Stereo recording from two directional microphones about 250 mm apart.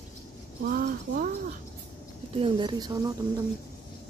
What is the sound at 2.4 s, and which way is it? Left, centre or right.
Speech, centre.